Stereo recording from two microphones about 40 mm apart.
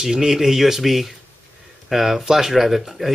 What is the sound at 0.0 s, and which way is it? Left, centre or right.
Speech, centre.